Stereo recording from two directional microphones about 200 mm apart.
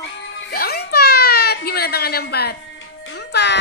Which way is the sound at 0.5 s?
50° left (ahead or behind).